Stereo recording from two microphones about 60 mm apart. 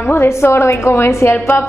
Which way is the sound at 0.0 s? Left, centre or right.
Left.